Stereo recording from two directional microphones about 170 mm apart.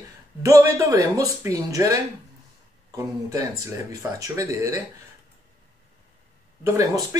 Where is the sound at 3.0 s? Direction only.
15° right (ahead or behind).